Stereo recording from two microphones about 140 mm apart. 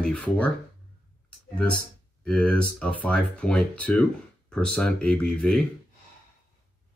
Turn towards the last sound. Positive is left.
turn(degrees=5)  # may be behind; listen again after turning